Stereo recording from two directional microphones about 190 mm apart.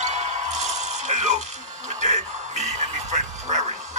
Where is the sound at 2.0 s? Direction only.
35° right (ahead or behind).